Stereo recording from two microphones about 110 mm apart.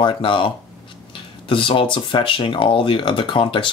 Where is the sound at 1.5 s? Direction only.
50° left (ahead or behind).